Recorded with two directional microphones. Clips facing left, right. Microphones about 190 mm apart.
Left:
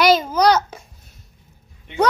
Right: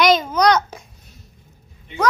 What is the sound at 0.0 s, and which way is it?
Babbling, 10° left (ahead or behind).